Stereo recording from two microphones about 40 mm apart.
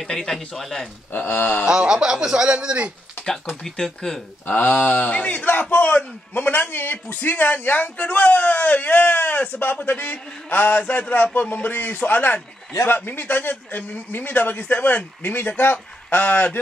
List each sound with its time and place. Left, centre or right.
0.0 s speech: centre
1.2 s speech: left
1.7 s speech: centre
3.6 s speech: centre
4.5 s a man's voice: left